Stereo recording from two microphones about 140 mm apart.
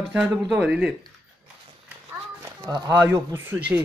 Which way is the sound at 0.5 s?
5° right (ahead or behind).